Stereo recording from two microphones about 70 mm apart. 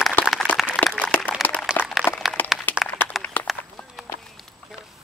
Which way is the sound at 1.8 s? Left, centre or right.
Left.